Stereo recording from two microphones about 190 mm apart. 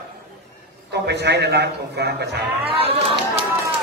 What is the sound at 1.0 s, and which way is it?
A man's voice, 60° right (ahead or behind).